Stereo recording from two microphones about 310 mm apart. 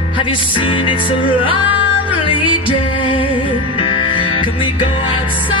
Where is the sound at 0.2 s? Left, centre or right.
Centre.